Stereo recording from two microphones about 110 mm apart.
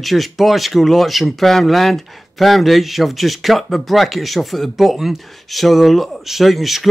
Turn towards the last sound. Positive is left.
turn(degrees=0)  # may be behind; listen again after turning